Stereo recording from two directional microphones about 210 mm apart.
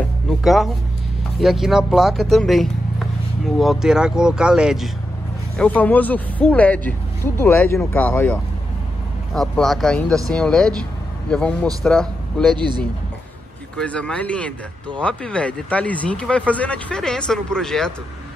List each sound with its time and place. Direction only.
0.3 s speech: centre (ahead or behind)
5.6 s a man's voice: 5° left (ahead or behind)
12.5 s speech: 20° right (ahead or behind)
13.7 s speech: 5° left (ahead or behind)